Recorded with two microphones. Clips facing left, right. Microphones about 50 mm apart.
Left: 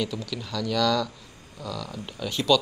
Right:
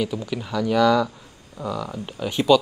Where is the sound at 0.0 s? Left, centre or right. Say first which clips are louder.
Right 4 dB; centre.